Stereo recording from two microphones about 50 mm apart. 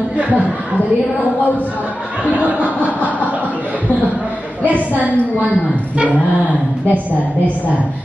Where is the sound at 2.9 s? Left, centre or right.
Left.